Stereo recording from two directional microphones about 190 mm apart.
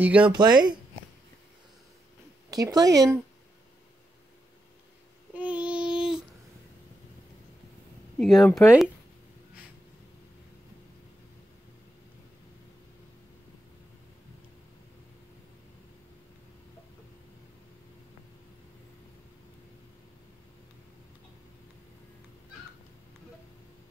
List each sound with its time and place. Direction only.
0.0 s speech: 5° right (ahead or behind)
0.3 s speech: 20° right (ahead or behind)
2.5 s speech: 20° right (ahead or behind)
5.3 s child singing: 5° right (ahead or behind)
8.2 s speech: centre (ahead or behind)